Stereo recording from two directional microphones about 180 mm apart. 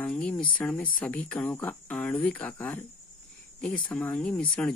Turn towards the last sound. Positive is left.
turn(degrees=5)  # may be behind; listen again after turning